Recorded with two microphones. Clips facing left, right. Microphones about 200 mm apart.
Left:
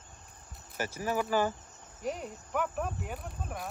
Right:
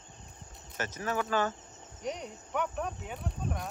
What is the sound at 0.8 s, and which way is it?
Speech, 10° left (ahead or behind).